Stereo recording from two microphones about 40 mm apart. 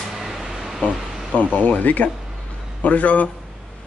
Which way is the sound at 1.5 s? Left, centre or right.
Left.